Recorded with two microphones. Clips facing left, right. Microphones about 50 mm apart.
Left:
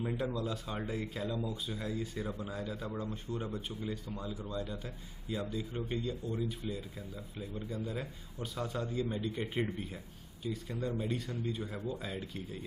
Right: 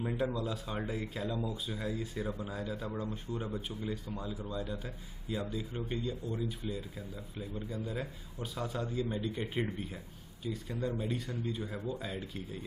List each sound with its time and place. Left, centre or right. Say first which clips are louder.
0.0 s speech: right 1 dB; centre